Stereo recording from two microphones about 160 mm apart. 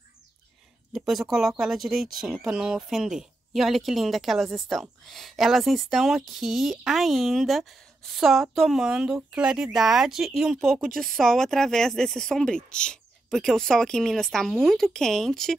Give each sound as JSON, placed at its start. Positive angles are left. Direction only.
{"t": 0.9, "sound": "speech", "side_deg": 0}